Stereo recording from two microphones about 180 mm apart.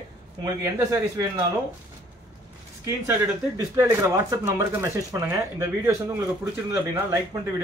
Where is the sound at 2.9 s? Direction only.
15° right (ahead or behind).